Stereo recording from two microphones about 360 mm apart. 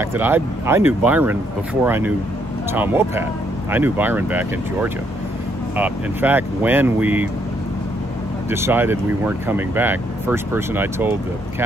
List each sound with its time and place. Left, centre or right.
0.0 s speech: centre
8.5 s speech: centre